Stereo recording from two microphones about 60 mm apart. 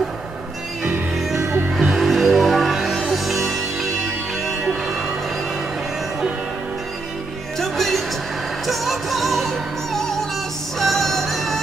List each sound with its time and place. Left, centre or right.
1.4 s music: right
1.8 s music: centre
7.5 s music: centre